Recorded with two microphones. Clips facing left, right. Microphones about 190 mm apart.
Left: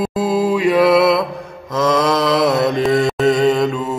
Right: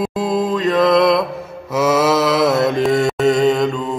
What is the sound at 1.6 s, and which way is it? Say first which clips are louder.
Mantra: right 1 dB; 10° right (ahead or behind).